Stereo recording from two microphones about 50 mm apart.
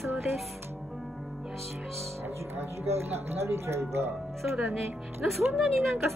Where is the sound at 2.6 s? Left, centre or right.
Right.